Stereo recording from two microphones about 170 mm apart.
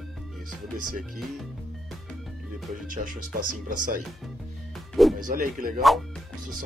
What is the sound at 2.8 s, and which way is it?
Speech, 55° right (ahead or behind).